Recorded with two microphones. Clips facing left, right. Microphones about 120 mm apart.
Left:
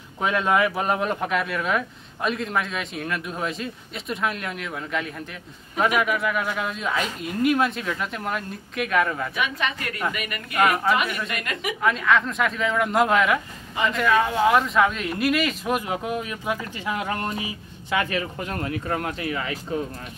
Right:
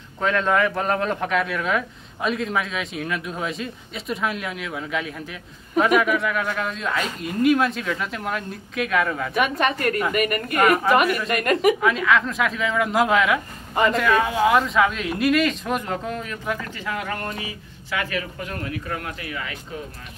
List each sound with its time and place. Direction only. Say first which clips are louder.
0.2 s speech: right 1 dB; 10° left (ahead or behind)
9.3 s a woman's voice: right 6 dB; 50° right (ahead or behind)
11.1 s speech: right 8 dB; centre (ahead or behind); by 19.6 s 30° left (ahead or behind)